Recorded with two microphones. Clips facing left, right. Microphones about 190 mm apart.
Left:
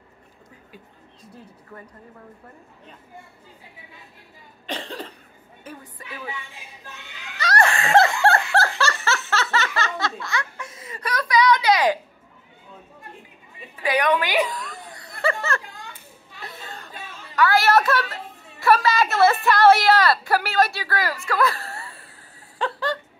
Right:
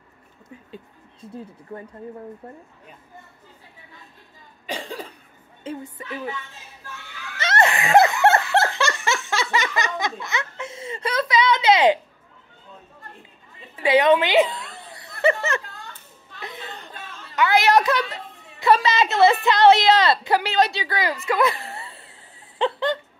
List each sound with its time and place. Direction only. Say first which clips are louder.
1.7 s speech: right 6 dB; 25° right (ahead or behind)
4.6 s cough: right 1 dB; 10° right (ahead or behind)
5.6 s speech: right 8 dB; 25° right (ahead or behind)
6.0 s speech: right 3 dB; 10° left (ahead or behind)
7.3 s snicker: right 1 dB; 25° right (ahead or behind)
13.8 s chuckle: right 5 dB; 25° right (ahead or behind)
15.6 s children playing: left 1 dB; 10° left (ahead or behind)
16.3 s a sound: right 2 dB; 20° right (ahead or behind)
16.9 s a sound: even; 10° left (ahead or behind)
17.4 s a woman's voice: even; 20° right (ahead or behind)
21.3 s a sound: right 2 dB; 20° right (ahead or behind)